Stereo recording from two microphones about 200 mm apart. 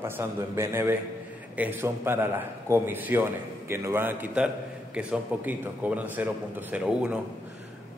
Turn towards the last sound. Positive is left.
turn(degrees=-5)  # may be behind; listen again after turning